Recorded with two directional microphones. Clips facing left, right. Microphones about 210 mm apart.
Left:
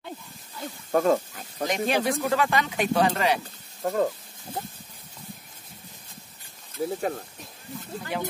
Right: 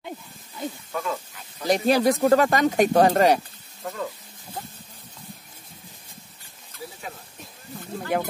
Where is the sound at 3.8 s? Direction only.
45° left (ahead or behind).